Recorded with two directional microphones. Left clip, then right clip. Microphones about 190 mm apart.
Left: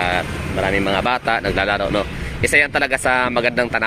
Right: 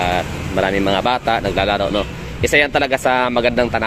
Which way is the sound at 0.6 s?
30° right (ahead or behind).